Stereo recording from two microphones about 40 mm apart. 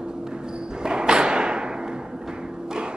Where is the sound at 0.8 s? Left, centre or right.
Right.